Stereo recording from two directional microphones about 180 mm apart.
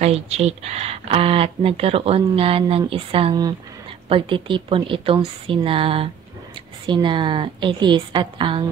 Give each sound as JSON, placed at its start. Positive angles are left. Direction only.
{"t": 0.0, "sound": "a woman's voice", "side_deg": -35}